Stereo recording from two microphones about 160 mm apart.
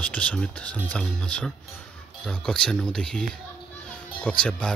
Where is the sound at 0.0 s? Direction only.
10° left (ahead or behind).